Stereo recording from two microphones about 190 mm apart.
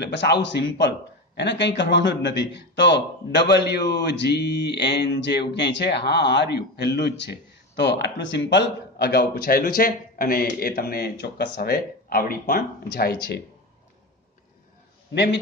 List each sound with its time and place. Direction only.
0.1 s a man's voice: 65° left (ahead or behind)